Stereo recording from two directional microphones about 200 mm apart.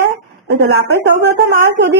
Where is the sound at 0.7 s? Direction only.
60° right (ahead or behind).